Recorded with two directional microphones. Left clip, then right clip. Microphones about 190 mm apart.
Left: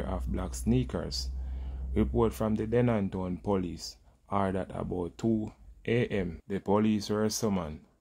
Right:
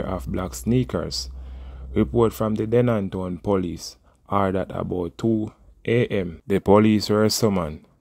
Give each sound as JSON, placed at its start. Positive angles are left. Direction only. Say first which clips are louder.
{"t": 0.0, "sound": "speech", "louder": "right 9 dB", "side_deg": -30}
{"t": 6.4, "sound": "speech", "louder": "right 13 dB", "side_deg": -40}